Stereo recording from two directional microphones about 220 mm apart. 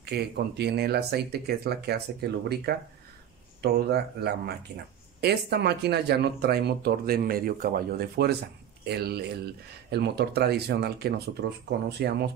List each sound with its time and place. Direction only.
0.0 s speech: 45° right (ahead or behind)